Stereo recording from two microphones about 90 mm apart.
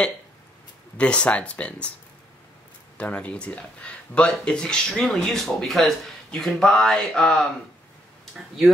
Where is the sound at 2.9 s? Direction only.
15° left (ahead or behind).